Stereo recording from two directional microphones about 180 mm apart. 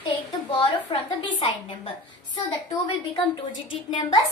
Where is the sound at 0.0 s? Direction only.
25° left (ahead or behind).